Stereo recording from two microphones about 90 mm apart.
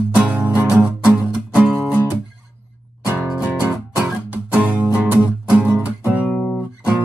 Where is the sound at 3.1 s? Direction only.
15° right (ahead or behind).